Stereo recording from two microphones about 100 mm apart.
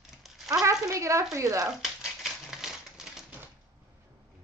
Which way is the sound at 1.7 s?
5° right (ahead or behind).